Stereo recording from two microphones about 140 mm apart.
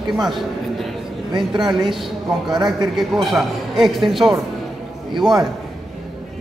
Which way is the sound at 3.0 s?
Centre (ahead or behind).